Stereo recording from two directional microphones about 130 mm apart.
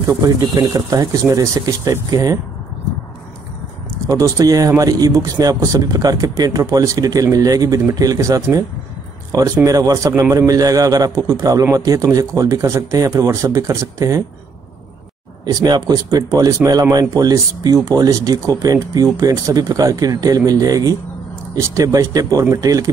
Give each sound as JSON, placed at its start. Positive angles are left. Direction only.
{"t": 0.0, "sound": "speech", "side_deg": -30}
{"t": 4.1, "sound": "speech", "side_deg": -25}
{"t": 15.4, "sound": "speech", "side_deg": -30}